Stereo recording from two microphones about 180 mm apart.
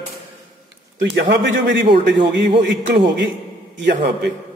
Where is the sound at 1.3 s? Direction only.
75° right (ahead or behind).